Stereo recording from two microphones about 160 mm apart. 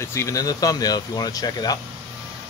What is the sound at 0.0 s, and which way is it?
Speech, 20° left (ahead or behind).